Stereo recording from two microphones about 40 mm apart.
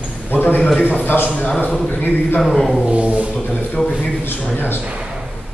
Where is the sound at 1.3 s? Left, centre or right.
Left.